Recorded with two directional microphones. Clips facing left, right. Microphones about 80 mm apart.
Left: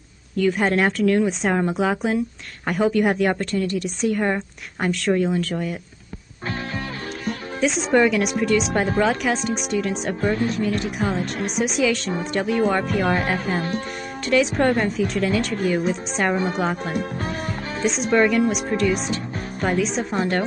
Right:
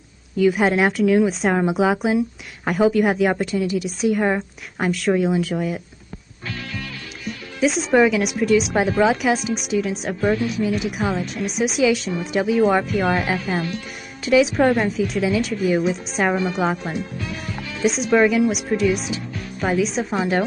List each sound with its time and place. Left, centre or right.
0.4 s a woman's voice: centre
7.6 s a woman's voice: centre
13.6 s speech: left
14.2 s a woman's voice: centre
16.9 s speech: left
17.8 s a woman's voice: centre